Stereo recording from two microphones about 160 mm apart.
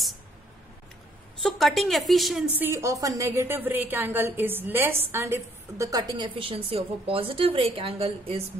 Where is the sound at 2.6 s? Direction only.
15° right (ahead or behind).